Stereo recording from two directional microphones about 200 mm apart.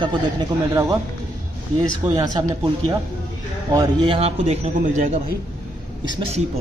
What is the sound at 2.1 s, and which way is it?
Speech, 20° right (ahead or behind).